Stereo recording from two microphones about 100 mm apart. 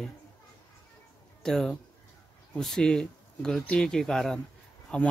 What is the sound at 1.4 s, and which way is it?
Speech, 5° left (ahead or behind).